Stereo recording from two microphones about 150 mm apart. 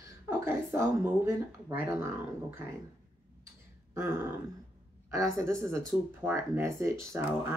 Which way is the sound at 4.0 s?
15° right (ahead or behind).